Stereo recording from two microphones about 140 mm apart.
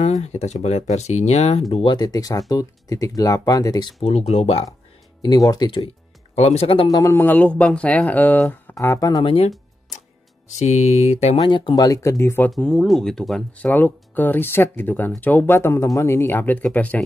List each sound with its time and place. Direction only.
0.0 s speech: 50° left (ahead or behind)
1.7 s speech: 35° left (ahead or behind)
4.0 s speech: 50° left (ahead or behind)
5.2 s speech: 25° left (ahead or behind)
6.3 s speech: 50° left (ahead or behind)
6.9 s speech: 25° left (ahead or behind)
9.2 s speech: 45° left (ahead or behind)
10.6 s speech: 50° left (ahead or behind)
11.3 s speech: 35° left (ahead or behind)
12.4 s speech: 5° left (ahead or behind)
13.7 s speech: 15° left (ahead or behind)